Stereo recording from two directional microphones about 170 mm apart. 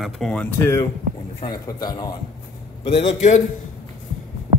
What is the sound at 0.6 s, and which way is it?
A man's voice, 15° left (ahead or behind).